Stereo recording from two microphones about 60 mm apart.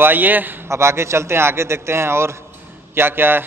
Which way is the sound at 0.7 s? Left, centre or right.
Right.